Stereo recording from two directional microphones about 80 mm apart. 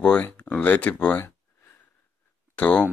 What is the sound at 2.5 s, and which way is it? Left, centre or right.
Speech, centre.